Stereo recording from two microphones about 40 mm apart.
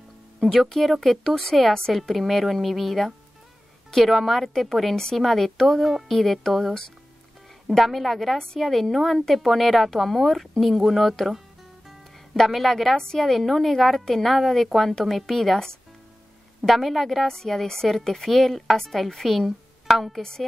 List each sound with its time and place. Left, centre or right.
0.4 s a woman's voice: centre
7.6 s a woman's voice: centre
12.4 s a woman's voice: centre
12.9 s speech: centre
13.2 s a woman's voice: centre
16.6 s a woman's voice: centre
20.2 s speech: centre